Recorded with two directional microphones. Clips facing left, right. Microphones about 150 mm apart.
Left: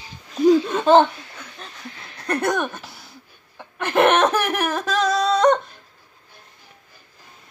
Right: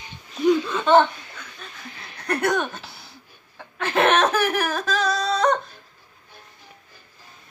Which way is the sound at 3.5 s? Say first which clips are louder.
Left 3 dB; 15° left (ahead or behind).